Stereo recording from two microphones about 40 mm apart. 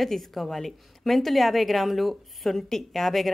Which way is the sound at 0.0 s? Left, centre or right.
Centre.